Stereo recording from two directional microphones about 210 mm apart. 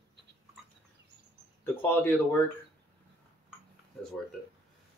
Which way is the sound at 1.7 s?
10° left (ahead or behind).